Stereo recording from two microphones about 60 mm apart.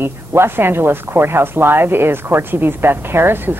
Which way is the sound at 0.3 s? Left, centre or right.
Right.